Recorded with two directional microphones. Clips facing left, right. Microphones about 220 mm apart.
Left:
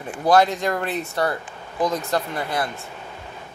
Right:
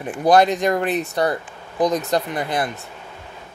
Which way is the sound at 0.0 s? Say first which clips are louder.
Right 2 dB; 15° right (ahead or behind).